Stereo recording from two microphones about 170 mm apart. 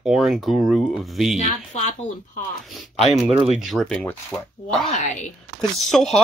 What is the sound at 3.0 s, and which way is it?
Speech, centre (ahead or behind).